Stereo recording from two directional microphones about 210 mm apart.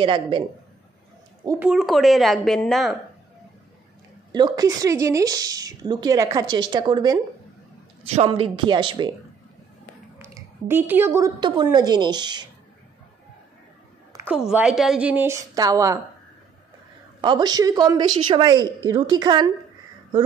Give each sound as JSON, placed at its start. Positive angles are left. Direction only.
{"t": 0.0, "sound": "a woman's voice", "side_deg": -25}
{"t": 1.6, "sound": "a woman's voice", "side_deg": 0}
{"t": 4.3, "sound": "a woman's voice", "side_deg": -20}
{"t": 10.1, "sound": "a woman's voice", "side_deg": -10}
{"t": 14.1, "sound": "speech", "side_deg": -5}
{"t": 17.2, "sound": "a woman's voice", "side_deg": -20}